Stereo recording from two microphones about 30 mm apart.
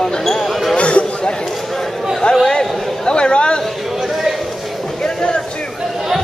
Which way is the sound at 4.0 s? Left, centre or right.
Centre.